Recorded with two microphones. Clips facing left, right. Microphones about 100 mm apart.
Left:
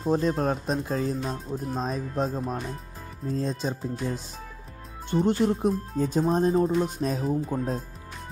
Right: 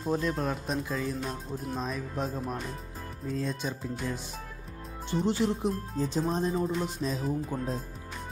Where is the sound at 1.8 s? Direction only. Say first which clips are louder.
Left 5 dB; 35° left (ahead or behind).